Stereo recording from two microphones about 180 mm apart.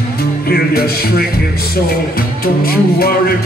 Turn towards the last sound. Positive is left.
turn(degrees=55)  # may be behind; listen again after turning